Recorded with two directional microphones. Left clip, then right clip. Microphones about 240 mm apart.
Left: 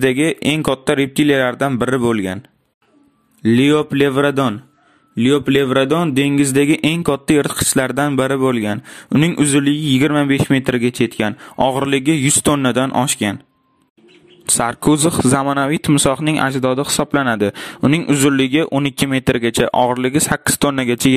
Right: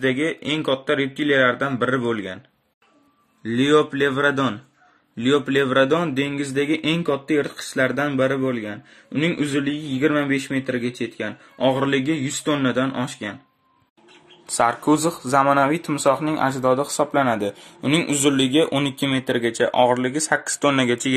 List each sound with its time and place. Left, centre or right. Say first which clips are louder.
0.0 s speech: left 6 dB; left
3.4 s speech: left 4 dB; left
14.9 s speech: left 5 dB; left
17.1 s speech: left 4 dB; left